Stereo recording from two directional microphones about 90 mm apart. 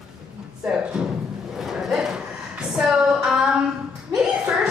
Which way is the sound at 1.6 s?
5° right (ahead or behind).